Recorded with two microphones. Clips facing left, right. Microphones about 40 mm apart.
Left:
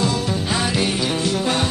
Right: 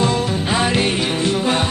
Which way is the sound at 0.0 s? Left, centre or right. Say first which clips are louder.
Right 3 dB; right.